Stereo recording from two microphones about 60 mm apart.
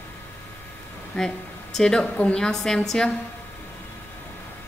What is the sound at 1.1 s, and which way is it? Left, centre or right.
A woman's voice, centre.